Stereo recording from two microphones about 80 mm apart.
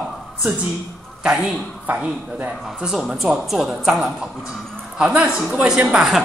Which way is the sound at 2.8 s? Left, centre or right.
Centre.